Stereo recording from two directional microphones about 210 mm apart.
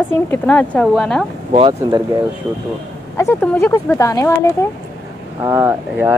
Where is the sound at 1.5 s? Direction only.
25° right (ahead or behind).